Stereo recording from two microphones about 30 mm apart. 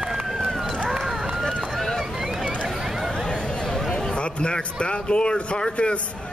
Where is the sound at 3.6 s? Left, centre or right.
Centre.